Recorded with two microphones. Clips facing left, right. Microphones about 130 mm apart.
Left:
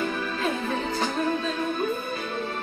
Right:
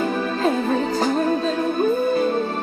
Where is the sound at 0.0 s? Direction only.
35° right (ahead or behind).